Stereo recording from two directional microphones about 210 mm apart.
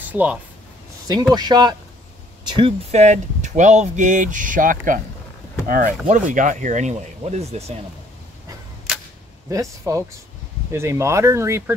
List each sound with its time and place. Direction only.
0.1 s speech: 5° right (ahead or behind)
1.3 s speech: 20° right (ahead or behind)
9.5 s speech: 15° right (ahead or behind)